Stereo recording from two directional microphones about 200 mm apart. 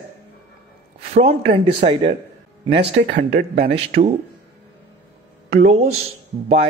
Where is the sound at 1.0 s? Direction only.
30° right (ahead or behind).